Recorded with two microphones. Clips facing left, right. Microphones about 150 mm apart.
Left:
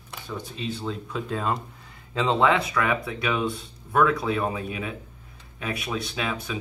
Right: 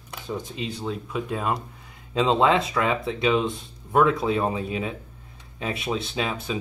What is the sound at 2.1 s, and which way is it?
Speech, 20° right (ahead or behind).